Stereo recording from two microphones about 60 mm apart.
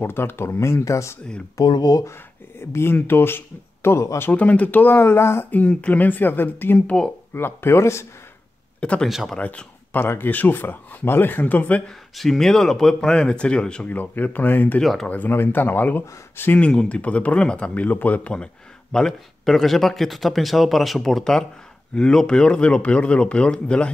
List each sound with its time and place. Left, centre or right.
0.0 s speech: left
0.6 s speech: left
1.6 s speech: left
2.6 s speech: left
4.3 s speech: left
5.5 s speech: left
9.0 s speech: centre
9.4 s speech: left
9.9 s speech: left
12.2 s speech: centre
13.8 s speech: left
14.8 s speech: centre
15.0 s speech: left
16.5 s speech: left